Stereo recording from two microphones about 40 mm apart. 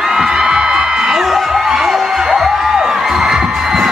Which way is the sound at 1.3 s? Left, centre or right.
Centre.